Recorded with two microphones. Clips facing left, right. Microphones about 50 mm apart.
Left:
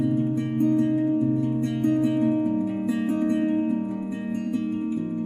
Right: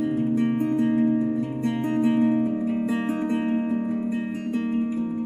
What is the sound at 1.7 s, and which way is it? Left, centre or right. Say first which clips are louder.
Music: right 2 dB; centre.